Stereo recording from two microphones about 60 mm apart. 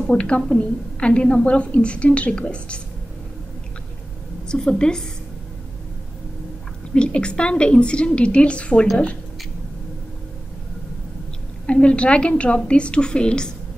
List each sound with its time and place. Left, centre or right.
0.0 s a woman's voice: centre
4.5 s a woman's voice: centre
6.9 s a woman's voice: centre
11.6 s a woman's voice: centre